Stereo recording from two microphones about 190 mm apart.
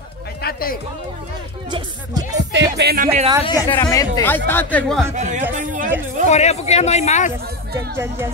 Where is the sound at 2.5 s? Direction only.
65° right (ahead or behind).